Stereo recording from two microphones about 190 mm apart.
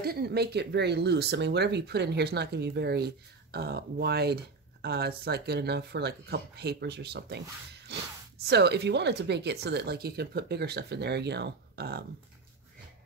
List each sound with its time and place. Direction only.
0.0 s speech: 55° right (ahead or behind)